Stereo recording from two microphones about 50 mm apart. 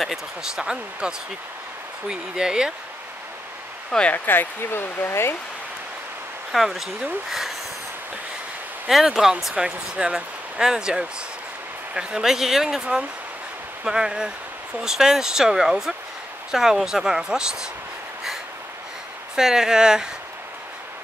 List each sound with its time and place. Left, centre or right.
0.0 s speech: centre
4.1 s speech: left
6.5 s speech: centre
8.8 s speech: centre
19.3 s speech: centre